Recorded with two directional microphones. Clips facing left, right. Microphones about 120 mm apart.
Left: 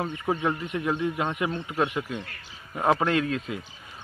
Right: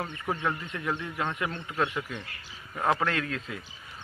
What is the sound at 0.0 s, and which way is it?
Speech, 15° left (ahead or behind).